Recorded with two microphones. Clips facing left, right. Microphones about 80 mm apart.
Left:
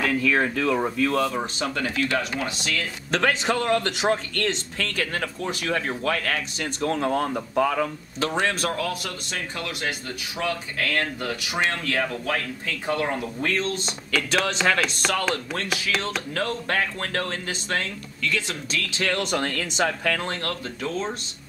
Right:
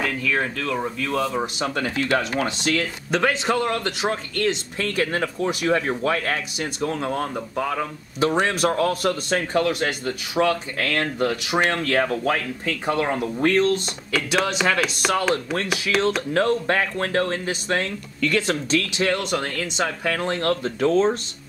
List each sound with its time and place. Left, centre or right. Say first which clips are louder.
0.0 s speech: left 2 dB; centre
1.8 s a man's voice: right 3 dB; right
3.1 s speech: right 1 dB; centre
4.7 s speech: right 4 dB; right
6.9 s speech: left 2 dB; centre
8.7 s a man's voice: right 8 dB; right
14.1 s speech: right 2 dB; centre
18.2 s speech: right 6 dB; right
19.1 s speech: right 1 dB; centre
20.1 s speech: right 2 dB; centre
20.4 s a man's voice: right 9 dB; right